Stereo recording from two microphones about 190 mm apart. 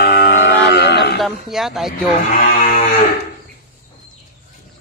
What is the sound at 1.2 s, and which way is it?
Cattle, centre (ahead or behind).